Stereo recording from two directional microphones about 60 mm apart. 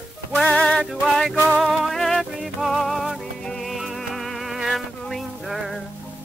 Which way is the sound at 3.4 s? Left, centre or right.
Centre.